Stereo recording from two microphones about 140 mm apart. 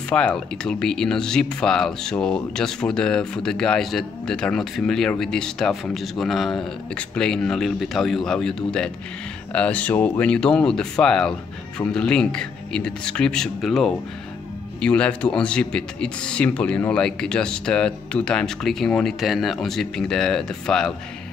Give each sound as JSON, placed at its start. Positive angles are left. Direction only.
{"t": 0.1, "sound": "speech", "side_deg": 10}